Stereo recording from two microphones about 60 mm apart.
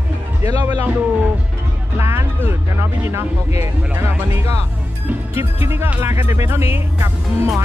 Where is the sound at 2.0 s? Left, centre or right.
Right.